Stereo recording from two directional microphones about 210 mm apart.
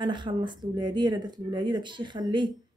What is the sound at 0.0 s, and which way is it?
Speech, 20° right (ahead or behind).